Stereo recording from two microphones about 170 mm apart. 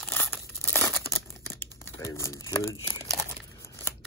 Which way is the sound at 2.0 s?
15° left (ahead or behind).